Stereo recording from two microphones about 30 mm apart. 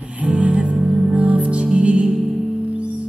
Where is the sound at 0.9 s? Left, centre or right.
Right.